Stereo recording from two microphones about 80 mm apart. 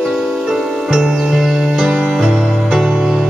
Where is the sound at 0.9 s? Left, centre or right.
Centre.